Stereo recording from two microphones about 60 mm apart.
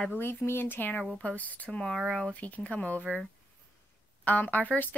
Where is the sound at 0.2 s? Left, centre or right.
Left.